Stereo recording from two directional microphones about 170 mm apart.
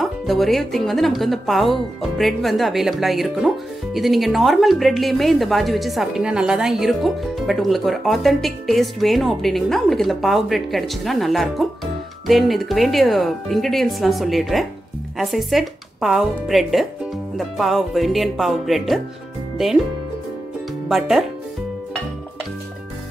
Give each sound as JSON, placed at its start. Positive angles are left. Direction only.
{"t": 0.0, "sound": "speech", "side_deg": 0}